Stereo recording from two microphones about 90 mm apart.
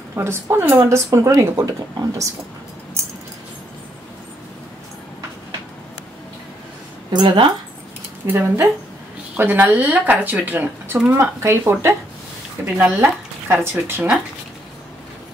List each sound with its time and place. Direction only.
0.1 s speech: 30° right (ahead or behind)
7.1 s speech: 55° right (ahead or behind)
8.3 s speech: 25° right (ahead or behind)
12.7 s speech: 15° right (ahead or behind)
13.0 s speech: 25° right (ahead or behind)